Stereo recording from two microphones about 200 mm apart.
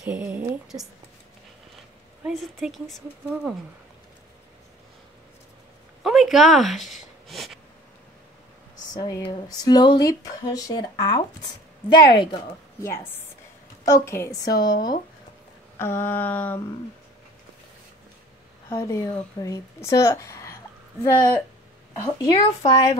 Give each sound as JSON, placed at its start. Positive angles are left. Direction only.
{"t": 0.0, "sound": "a woman's voice", "side_deg": -10}
{"t": 2.2, "sound": "speech", "side_deg": 0}
{"t": 6.0, "sound": "speech", "side_deg": 0}
{"t": 8.9, "sound": "speech", "side_deg": 20}
{"t": 12.8, "sound": "speech", "side_deg": 10}
{"t": 15.8, "sound": "speech", "side_deg": 10}
{"t": 18.7, "sound": "speech", "side_deg": 15}